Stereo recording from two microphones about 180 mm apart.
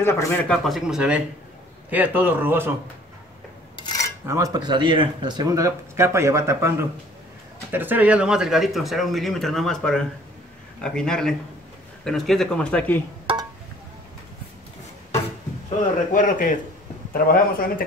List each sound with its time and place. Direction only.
0.0 s a man's voice: 10° left (ahead or behind)
0.7 s speech: 5° right (ahead or behind)
3.7 s filing: 25° left (ahead or behind)
4.3 s speech: 20° right (ahead or behind); by 13.0 s 10° left (ahead or behind)
16.1 s a man's voice: 45° left (ahead or behind)